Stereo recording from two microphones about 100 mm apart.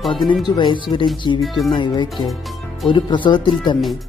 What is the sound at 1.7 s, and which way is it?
Speech, 50° left (ahead or behind).